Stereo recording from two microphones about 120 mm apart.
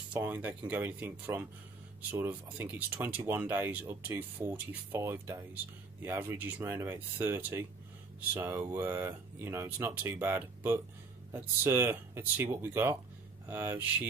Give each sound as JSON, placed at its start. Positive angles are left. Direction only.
{"t": 0.1, "sound": "speech", "side_deg": -15}